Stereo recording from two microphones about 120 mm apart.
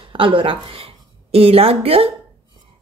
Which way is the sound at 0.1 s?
45° right (ahead or behind).